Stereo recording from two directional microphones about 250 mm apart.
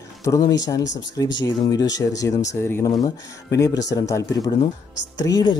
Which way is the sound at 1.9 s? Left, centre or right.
Centre.